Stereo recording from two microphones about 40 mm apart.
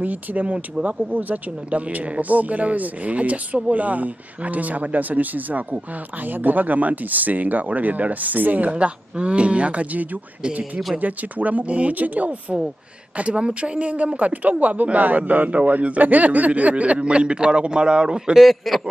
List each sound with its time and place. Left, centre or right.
0.0 s speech: right
13.2 s speech: right
18.4 s a man's voice: centre